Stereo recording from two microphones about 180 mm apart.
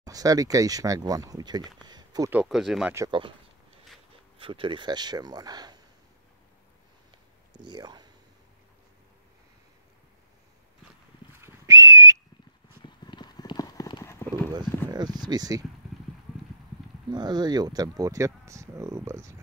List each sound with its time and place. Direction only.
0.0 s speech: 20° right (ahead or behind)
1.9 s a sound: 20° right (ahead or behind)
2.3 s speech: centre (ahead or behind)
3.1 s speech: 30° right (ahead or behind)
4.4 s speech: 30° right (ahead or behind)
7.5 s speech: 25° right (ahead or behind)
11.3 s whistle: 15° right (ahead or behind)
12.8 s clip-clop: 25° left (ahead or behind)
14.2 s clip-clop: 10° left (ahead or behind)
14.9 s speech: 25° right (ahead or behind)
17.1 s speech: 25° right (ahead or behind)